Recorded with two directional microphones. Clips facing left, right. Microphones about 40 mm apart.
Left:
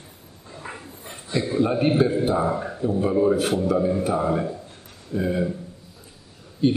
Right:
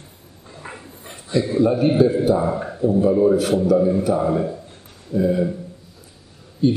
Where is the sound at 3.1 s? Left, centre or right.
Centre.